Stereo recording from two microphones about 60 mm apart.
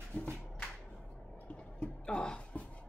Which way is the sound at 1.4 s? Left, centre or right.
Left.